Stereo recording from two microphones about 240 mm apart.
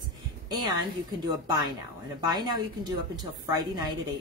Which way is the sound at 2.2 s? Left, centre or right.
Centre.